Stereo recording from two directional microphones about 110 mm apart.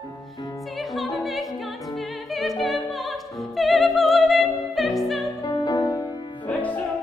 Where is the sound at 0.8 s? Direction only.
Centre (ahead or behind).